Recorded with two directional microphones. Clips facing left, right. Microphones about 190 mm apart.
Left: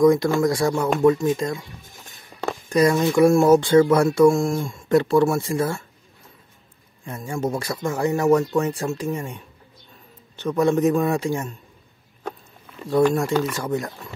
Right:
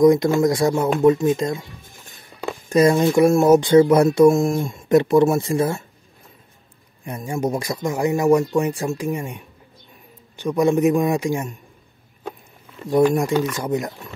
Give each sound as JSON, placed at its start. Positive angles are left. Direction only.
{"t": 0.0, "sound": "speech", "side_deg": -20}
{"t": 2.7, "sound": "speech", "side_deg": -25}
{"t": 7.1, "sound": "speech", "side_deg": -15}
{"t": 12.9, "sound": "speech", "side_deg": -15}